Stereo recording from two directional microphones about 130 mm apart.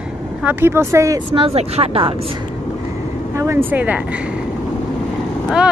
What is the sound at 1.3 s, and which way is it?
Speech, 45° right (ahead or behind).